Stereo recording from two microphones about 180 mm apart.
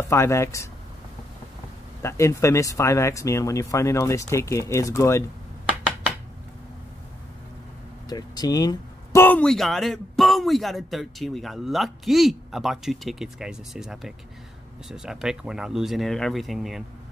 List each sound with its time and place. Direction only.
0.1 s speech: 15° left (ahead or behind)
2.0 s speech: 15° left (ahead or behind)
8.1 s speech: 20° left (ahead or behind); by 16.8 s centre (ahead or behind)